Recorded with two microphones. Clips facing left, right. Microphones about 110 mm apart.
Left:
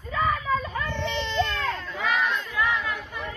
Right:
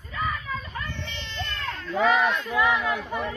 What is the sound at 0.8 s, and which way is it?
Baby cry, 90° left.